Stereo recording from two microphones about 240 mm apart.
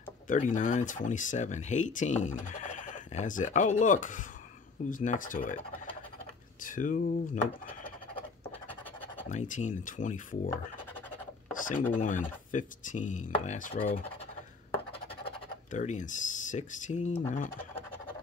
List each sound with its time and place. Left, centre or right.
0.3 s speech: left
6.6 s speech: left
8.5 s scratch: centre
9.3 s speech: left
11.5 s a sound: left
11.9 s speech: left
15.7 s speech: left